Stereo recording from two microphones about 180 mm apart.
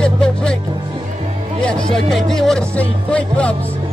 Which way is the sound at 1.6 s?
5° left (ahead or behind).